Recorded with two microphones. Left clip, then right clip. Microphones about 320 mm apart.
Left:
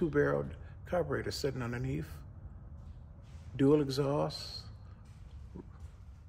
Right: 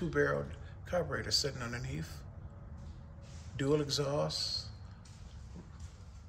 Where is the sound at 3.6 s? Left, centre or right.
Left.